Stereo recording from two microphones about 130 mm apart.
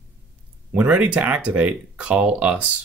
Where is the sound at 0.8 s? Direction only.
10° right (ahead or behind).